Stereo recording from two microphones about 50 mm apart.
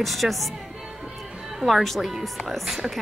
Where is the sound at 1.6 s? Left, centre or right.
Centre.